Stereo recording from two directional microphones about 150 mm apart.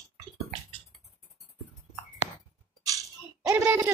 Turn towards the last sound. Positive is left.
turn(degrees=-10)  # may be behind; listen again after turning